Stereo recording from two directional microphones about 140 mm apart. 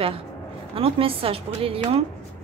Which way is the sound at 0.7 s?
40° right (ahead or behind).